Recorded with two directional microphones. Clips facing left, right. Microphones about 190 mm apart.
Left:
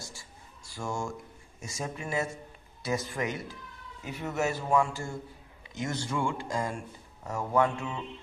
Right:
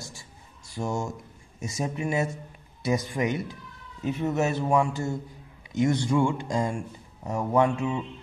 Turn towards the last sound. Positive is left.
turn(degrees=-20)  # may be behind; listen again after turning